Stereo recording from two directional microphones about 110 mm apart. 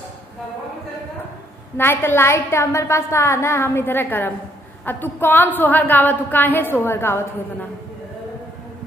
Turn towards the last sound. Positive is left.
turn(degrees=20)  # may be behind; listen again after turning